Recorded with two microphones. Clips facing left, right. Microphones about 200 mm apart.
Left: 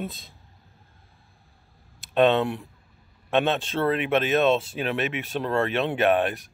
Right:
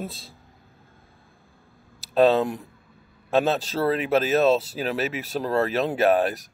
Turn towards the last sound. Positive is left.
turn(degrees=-35)  # may be behind; listen again after turning